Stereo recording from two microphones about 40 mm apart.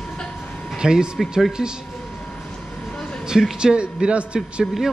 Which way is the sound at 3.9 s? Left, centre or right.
Right.